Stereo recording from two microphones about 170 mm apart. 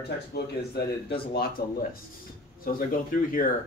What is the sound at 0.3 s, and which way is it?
Speech, 70° left (ahead or behind).